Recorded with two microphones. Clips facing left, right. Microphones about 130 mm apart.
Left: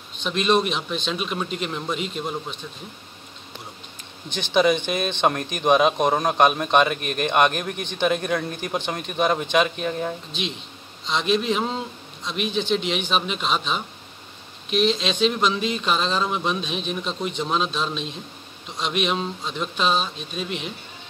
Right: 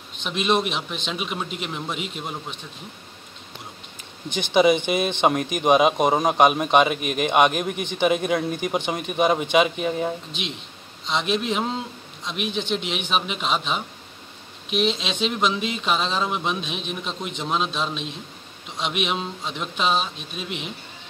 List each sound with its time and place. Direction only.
0.2 s speech: 10° right (ahead or behind)
4.3 s speech: 15° right (ahead or behind)
11.1 s a man's voice: 5° right (ahead or behind)
12.4 s speech: 55° right (ahead or behind)
13.1 s speech: 10° right (ahead or behind)
14.7 s speech: 65° right (ahead or behind)
15.2 s speech: 5° right (ahead or behind)
19.0 s speech: 10° right (ahead or behind)